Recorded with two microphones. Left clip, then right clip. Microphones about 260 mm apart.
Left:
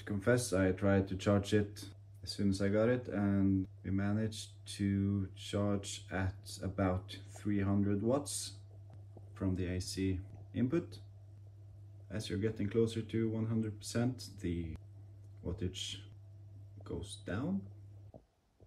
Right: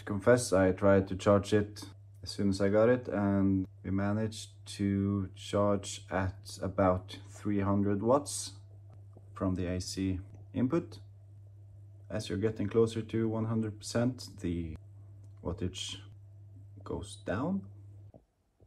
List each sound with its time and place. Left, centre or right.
0.0 s speech: centre
9.6 s speech: centre
12.1 s speech: centre
18.1 s stomach rumble: right